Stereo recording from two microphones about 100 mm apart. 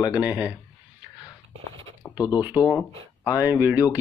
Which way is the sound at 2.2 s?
40° left (ahead or behind).